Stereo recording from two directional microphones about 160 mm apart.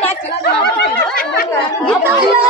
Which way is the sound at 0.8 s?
85° left.